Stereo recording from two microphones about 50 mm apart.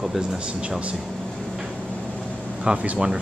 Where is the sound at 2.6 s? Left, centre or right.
Centre.